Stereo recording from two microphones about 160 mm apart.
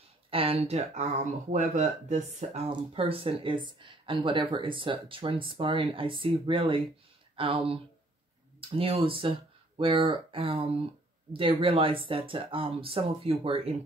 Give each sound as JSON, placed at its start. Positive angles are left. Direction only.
{"t": 0.3, "sound": "speech", "side_deg": -35}
{"t": 2.7, "sound": "speech", "side_deg": -35}